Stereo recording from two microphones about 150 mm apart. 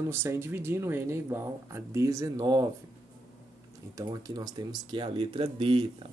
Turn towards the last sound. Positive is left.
turn(degrees=-35)  # may be behind; listen again after turning